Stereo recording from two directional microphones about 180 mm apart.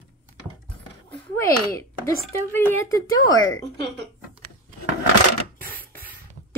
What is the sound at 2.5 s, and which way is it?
Speech, 10° left (ahead or behind).